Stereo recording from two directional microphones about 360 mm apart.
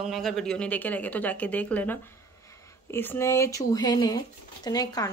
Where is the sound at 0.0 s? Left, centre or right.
Centre.